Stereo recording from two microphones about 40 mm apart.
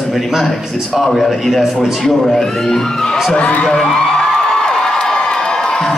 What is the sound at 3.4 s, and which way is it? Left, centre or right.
Speech, left.